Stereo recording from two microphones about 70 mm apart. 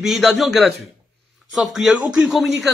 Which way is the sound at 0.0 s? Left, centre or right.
Centre.